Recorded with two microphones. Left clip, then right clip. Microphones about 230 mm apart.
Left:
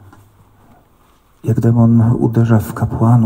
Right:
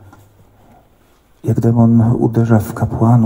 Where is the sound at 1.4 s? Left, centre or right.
Left.